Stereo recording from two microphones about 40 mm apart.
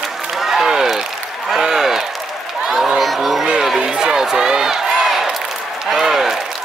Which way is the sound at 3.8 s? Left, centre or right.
Centre.